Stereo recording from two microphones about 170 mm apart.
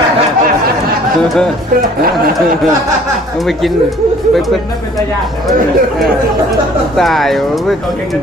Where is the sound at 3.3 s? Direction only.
Centre (ahead or behind).